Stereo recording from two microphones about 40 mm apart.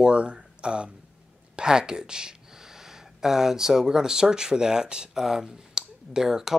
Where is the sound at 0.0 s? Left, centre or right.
Right.